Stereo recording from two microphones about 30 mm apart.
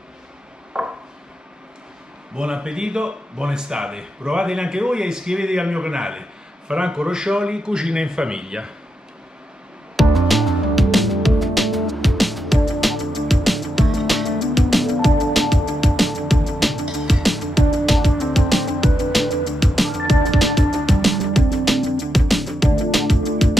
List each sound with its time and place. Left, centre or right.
0.7 s a sound: centre
2.3 s a man's voice: right
9.9 s music: centre